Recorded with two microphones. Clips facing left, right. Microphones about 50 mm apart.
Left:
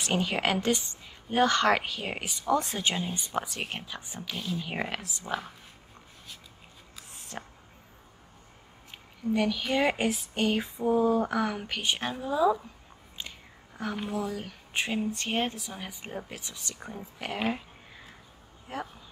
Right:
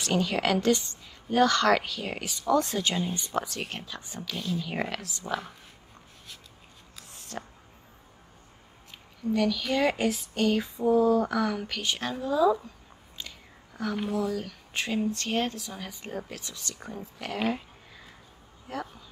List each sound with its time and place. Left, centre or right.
0.0 s child singing: left
3.0 s child singing: centre
7.3 s child singing: left
9.3 s child singing: left
13.2 s whispering: left
13.9 s child singing: centre
18.7 s child singing: left